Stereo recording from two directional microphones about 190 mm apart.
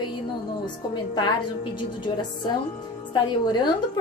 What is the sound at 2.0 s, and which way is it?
Speech, 25° left (ahead or behind).